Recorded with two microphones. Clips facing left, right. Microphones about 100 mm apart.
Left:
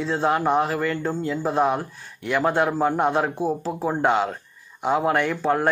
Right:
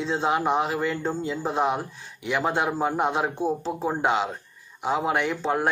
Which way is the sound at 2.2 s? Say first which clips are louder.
Left 4 dB; 10° right (ahead or behind).